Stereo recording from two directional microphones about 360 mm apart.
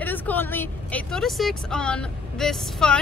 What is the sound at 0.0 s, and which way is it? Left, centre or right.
Speech, centre.